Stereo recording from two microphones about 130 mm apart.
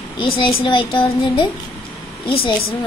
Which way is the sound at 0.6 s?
40° left (ahead or behind).